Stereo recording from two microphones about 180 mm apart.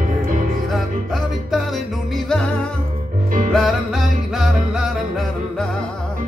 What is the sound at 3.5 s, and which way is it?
Music, centre (ahead or behind).